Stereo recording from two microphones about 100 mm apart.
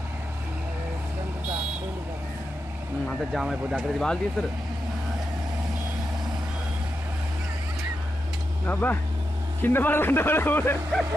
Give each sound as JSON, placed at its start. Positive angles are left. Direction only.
{"t": 3.3, "sound": "speech", "side_deg": 0}
{"t": 8.6, "sound": "speech", "side_deg": 15}